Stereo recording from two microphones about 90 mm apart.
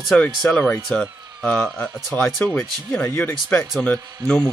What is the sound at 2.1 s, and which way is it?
Speech, 15° left (ahead or behind).